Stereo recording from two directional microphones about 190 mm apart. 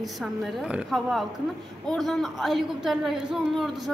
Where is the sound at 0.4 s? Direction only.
Centre (ahead or behind).